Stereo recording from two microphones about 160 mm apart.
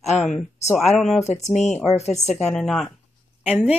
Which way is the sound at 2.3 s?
5° left (ahead or behind).